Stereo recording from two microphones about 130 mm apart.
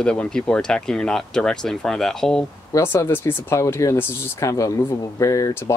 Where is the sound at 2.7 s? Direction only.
20° left (ahead or behind).